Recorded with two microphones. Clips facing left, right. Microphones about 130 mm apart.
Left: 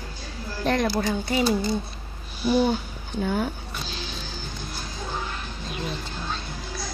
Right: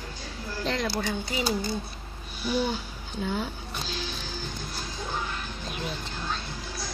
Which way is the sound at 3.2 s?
55° left (ahead or behind).